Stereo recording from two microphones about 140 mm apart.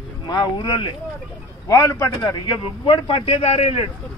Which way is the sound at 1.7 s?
20° left (ahead or behind).